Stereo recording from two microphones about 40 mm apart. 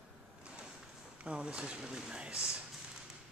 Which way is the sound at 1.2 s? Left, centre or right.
Right.